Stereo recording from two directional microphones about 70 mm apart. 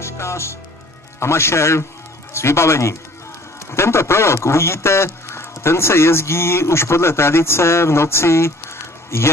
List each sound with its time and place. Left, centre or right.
0.0 s speech: left